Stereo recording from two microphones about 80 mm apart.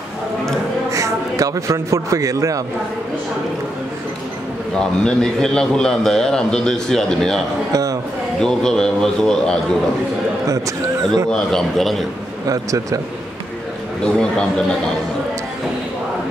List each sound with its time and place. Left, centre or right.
0.9 s a man's voice: right
4.7 s a man's voice: centre
7.7 s speech: right
8.4 s a man's voice: centre
11.2 s a man's voice: centre
12.4 s a man's voice: right
14.0 s a man's voice: centre